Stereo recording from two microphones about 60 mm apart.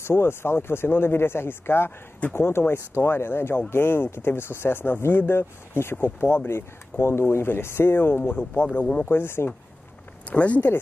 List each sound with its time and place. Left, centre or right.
0.0 s speech: left
10.3 s speech: left